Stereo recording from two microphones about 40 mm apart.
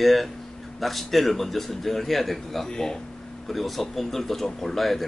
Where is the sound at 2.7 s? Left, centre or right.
Centre.